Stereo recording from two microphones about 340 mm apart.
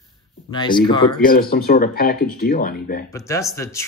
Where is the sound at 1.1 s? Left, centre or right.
Left.